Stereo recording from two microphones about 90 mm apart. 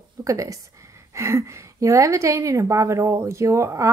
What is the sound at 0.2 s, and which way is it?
A woman's voice, 40° right (ahead or behind).